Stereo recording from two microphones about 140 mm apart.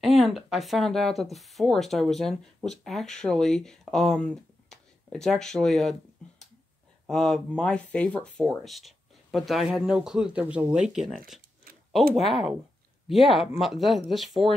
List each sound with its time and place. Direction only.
0.0 s speech: centre (ahead or behind)
7.1 s speech: 5° left (ahead or behind)